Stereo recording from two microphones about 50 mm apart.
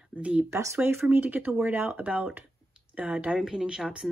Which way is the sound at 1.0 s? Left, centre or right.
Right.